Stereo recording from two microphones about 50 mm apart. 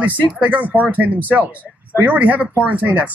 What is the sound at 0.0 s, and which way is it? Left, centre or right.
Speech, right.